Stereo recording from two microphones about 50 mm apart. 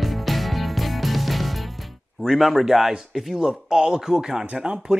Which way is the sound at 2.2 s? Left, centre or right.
Centre.